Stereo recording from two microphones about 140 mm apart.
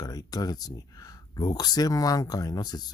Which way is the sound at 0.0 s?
25° left (ahead or behind).